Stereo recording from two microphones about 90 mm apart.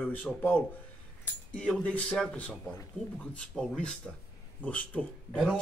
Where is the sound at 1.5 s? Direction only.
15° left (ahead or behind).